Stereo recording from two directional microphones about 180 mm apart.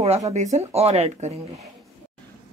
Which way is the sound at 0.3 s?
40° right (ahead or behind).